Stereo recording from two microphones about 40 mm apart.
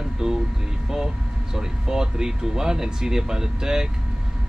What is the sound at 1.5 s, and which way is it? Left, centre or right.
Speech, centre.